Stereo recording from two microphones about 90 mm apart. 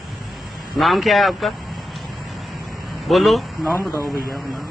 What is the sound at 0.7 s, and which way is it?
Speech, centre (ahead or behind).